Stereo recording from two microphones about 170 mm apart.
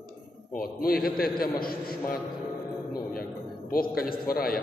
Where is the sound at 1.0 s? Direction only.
60° left (ahead or behind).